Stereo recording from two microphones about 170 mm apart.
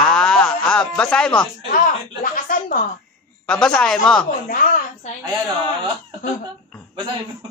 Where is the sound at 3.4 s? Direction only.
5° left (ahead or behind).